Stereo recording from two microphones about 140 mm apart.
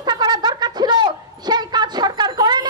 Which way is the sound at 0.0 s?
30° right (ahead or behind).